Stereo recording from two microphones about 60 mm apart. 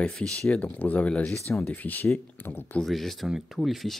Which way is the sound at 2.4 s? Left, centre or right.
Left.